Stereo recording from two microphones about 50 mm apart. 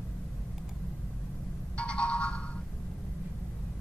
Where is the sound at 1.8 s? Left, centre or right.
Left.